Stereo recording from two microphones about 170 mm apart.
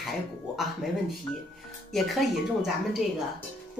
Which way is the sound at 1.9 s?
Centre (ahead or behind).